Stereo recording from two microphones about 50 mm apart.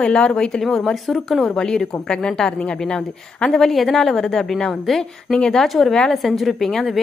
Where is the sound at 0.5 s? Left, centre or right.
Centre.